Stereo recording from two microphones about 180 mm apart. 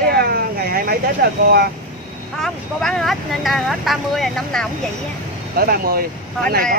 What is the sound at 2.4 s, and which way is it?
Speech, centre (ahead or behind).